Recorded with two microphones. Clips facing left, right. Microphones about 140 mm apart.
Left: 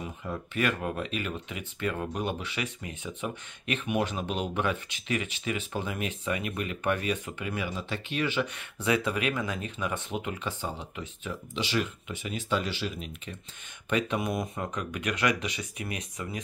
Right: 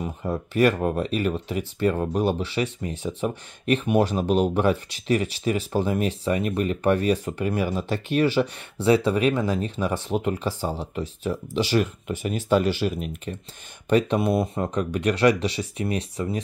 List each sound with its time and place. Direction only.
0.0 s speech: 40° right (ahead or behind)
13.8 s speech: 35° right (ahead or behind)